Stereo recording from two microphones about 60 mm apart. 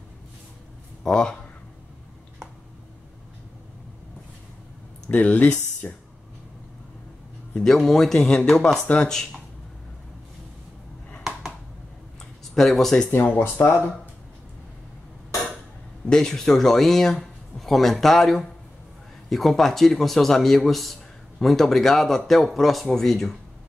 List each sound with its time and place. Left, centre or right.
1.0 s speech: centre
5.1 s speech: left
7.5 s speech: centre
12.5 s speech: centre
13.4 s speech: left
16.1 s speech: centre